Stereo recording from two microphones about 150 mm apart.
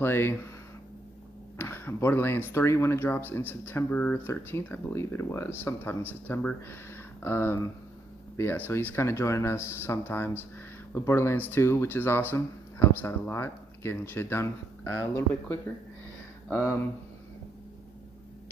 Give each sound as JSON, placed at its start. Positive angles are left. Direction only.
{"t": 0.0, "sound": "speech", "side_deg": 15}
{"t": 1.6, "sound": "speech", "side_deg": 15}